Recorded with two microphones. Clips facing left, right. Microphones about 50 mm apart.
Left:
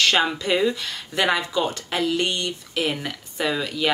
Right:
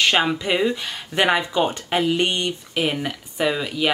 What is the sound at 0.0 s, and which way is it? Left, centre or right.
Speech, centre.